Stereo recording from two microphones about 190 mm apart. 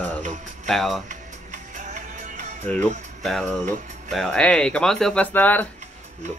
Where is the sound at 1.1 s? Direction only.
40° right (ahead or behind).